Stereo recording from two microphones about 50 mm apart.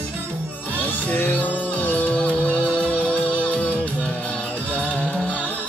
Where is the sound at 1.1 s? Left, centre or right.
Left.